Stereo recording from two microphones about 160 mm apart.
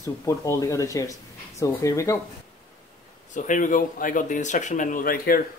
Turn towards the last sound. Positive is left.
turn(degrees=65)  # may be behind; listen again after turning